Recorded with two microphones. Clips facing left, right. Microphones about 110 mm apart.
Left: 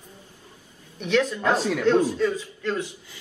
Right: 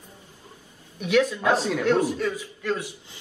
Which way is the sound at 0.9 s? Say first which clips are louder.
Right 1 dB; 10° right (ahead or behind).